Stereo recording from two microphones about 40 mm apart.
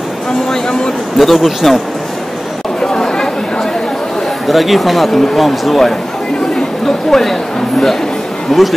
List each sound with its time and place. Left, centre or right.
1.1 s speech: centre
2.8 s chatter: centre
4.5 s speech: centre
7.1 s speech: centre
8.5 s speech: centre